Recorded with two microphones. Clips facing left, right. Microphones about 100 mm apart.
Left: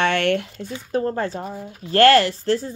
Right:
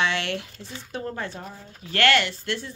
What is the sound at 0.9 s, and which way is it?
Speech, 40° left (ahead or behind).